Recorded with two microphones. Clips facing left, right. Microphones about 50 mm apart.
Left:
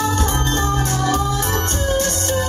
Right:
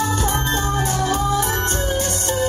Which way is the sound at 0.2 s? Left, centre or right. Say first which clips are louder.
Left 1 dB; centre.